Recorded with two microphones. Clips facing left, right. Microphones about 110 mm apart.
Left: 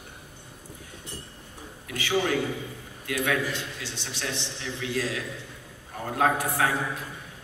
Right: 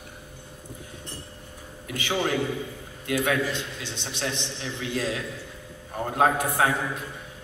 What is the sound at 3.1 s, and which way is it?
A man's voice, 25° right (ahead or behind).